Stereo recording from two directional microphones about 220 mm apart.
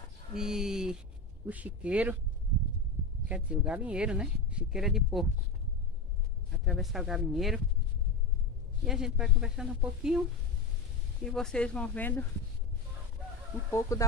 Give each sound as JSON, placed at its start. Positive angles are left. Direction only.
{"t": 0.3, "sound": "speech", "side_deg": 0}
{"t": 3.3, "sound": "speech", "side_deg": -5}
{"t": 6.5, "sound": "speech", "side_deg": 0}
{"t": 8.8, "sound": "speech", "side_deg": 0}
{"t": 11.2, "sound": "speech", "side_deg": 0}
{"t": 13.7, "sound": "speech", "side_deg": 15}